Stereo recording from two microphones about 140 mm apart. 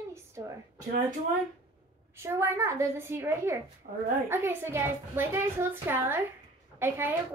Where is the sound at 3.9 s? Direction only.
90° right.